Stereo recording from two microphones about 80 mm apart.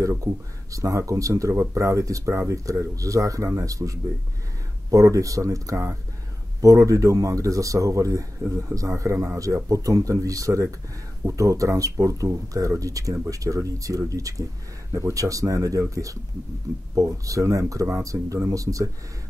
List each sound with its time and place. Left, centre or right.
0.2 s speech: right